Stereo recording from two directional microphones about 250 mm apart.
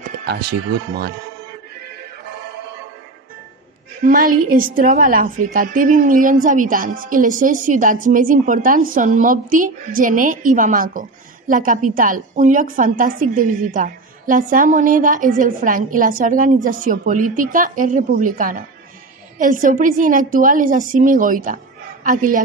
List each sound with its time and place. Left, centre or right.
0.0 s speech: right
4.0 s a woman's voice: right